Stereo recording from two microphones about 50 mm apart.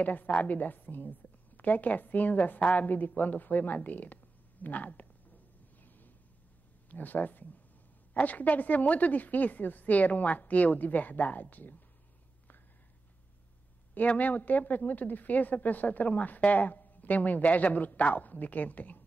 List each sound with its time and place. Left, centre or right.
0.0 s a woman's voice: left
5.8 s a sound: left
6.9 s a woman's voice: left
13.9 s a woman's voice: left